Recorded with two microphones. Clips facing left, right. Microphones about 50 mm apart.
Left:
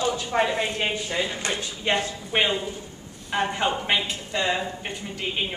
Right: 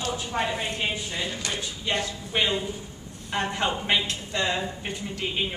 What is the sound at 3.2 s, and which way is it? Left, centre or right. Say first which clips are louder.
A woman's voice: left 2 dB; centre.